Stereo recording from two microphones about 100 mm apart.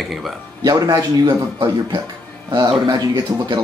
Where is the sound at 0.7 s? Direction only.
40° right (ahead or behind).